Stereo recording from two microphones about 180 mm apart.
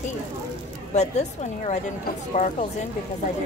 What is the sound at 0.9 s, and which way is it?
Speech, 40° left (ahead or behind).